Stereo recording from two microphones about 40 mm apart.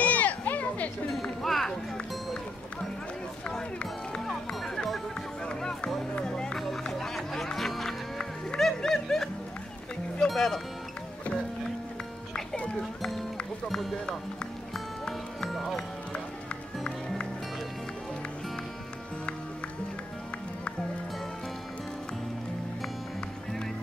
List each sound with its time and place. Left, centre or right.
0.0 s music: left
1.1 s music: centre
3.5 s music: centre
5.6 s music: centre
13.7 s music: centre